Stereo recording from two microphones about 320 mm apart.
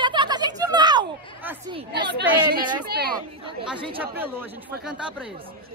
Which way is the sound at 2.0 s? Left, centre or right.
Right.